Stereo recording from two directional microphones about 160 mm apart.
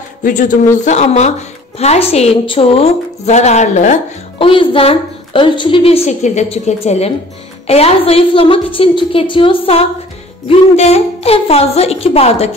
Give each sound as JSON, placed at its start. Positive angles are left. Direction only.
{"t": 0.2, "sound": "a woman's voice", "side_deg": 55}
{"t": 4.4, "sound": "a woman's voice", "side_deg": 35}